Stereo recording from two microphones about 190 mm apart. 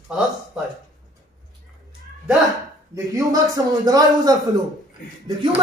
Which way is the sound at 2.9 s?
15° right (ahead or behind).